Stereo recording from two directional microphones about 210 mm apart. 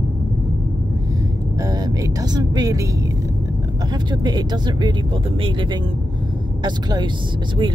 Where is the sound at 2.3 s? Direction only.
20° right (ahead or behind).